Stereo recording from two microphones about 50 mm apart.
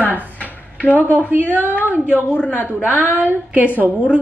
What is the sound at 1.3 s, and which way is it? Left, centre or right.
Speech, right.